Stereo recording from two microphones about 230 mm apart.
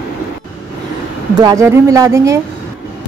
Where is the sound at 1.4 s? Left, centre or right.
Centre.